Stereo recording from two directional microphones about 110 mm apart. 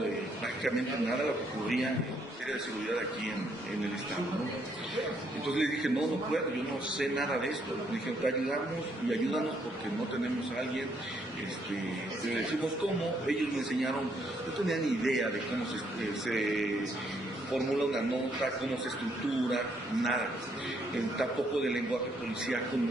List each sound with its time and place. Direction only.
5.5 s a man's voice: 5° right (ahead or behind)
7.0 s a man's voice: 5° right (ahead or behind)
13.3 s a man's voice: centre (ahead or behind)
16.3 s a man's voice: centre (ahead or behind)
19.5 s a man's voice: 5° right (ahead or behind)